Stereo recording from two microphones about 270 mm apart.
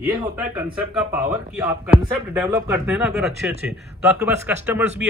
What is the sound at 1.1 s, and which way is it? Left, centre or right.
Speech, centre.